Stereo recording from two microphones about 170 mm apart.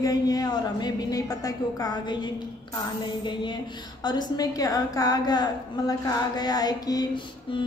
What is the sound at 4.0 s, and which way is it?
A woman's voice, 25° left (ahead or behind).